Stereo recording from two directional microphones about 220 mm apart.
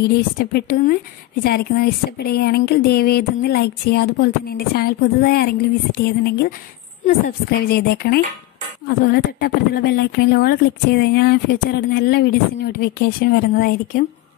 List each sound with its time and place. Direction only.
0.1 s speech: 45° left (ahead or behind)